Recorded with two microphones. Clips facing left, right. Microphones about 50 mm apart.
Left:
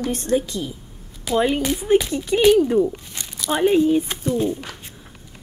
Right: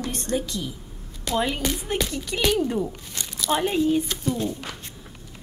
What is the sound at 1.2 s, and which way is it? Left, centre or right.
Speech, centre.